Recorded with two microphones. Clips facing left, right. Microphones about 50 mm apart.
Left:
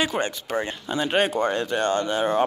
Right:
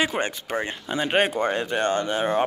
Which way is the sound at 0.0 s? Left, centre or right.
Right.